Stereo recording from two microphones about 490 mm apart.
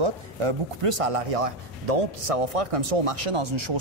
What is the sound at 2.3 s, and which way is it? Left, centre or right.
Speech, right.